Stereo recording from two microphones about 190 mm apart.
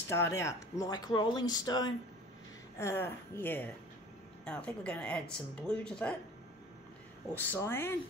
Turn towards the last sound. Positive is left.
turn(degrees=10)  # may be behind; listen again after turning